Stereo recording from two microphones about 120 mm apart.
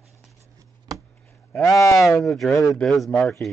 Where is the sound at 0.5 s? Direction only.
30° right (ahead or behind).